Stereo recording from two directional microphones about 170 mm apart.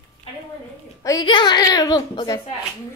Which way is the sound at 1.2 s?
25° left (ahead or behind).